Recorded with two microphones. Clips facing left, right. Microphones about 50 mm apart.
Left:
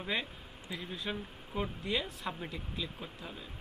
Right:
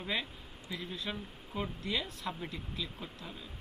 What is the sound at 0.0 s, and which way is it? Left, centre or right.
Speech, centre.